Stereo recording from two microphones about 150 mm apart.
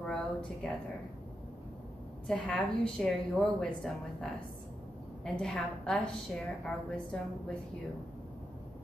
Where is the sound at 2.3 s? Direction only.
5° left (ahead or behind).